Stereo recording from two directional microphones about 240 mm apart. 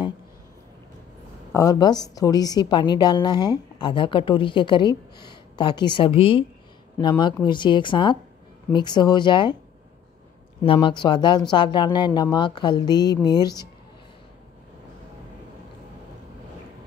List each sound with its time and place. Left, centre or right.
1.5 s a woman's voice: centre
10.6 s a woman's voice: left